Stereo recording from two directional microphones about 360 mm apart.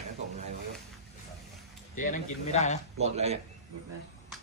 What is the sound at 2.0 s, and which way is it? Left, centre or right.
Speech, left.